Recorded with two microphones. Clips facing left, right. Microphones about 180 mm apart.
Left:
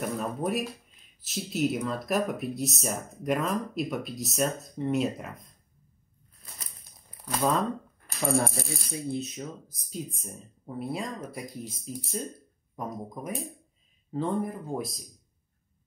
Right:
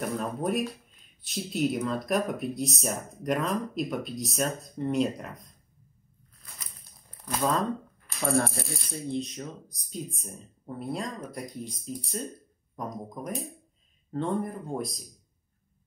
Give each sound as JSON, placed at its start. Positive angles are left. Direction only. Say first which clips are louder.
{"t": 0.0, "sound": "speech", "louder": "even", "side_deg": 0}
{"t": 8.1, "sound": "coin", "louder": "left 2 dB", "side_deg": 45}
{"t": 8.5, "sound": "speech", "louder": "left 1 dB", "side_deg": 5}